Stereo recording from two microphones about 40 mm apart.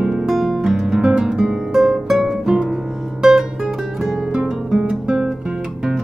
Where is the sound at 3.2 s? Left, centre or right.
Centre.